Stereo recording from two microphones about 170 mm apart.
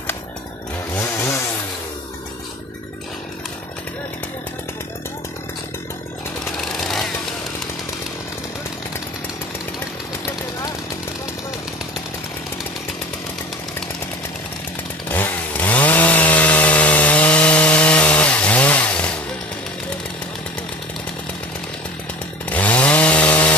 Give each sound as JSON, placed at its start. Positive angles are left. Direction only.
{"t": 0.9, "sound": "chainsaw", "side_deg": 15}
{"t": 6.7, "sound": "jackhammer", "side_deg": 0}
{"t": 15.0, "sound": "chainsaw", "side_deg": 10}
{"t": 22.5, "sound": "chainsaw", "side_deg": 10}